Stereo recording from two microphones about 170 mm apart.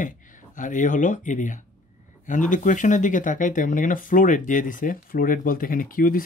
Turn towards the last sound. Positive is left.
turn(degrees=55)  # may be behind; listen again after turning